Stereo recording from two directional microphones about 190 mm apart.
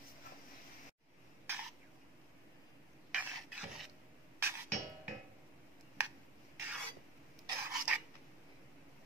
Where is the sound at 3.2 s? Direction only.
5° right (ahead or behind).